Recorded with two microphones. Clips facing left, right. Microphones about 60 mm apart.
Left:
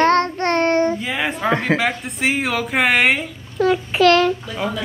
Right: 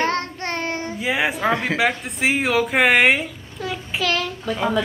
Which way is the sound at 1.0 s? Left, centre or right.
Centre.